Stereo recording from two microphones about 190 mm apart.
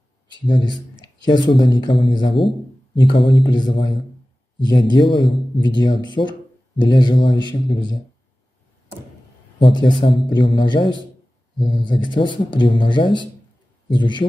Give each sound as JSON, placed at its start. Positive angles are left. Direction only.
{"t": 0.3, "sound": "a man's voice", "side_deg": 25}
{"t": 9.6, "sound": "speech", "side_deg": 25}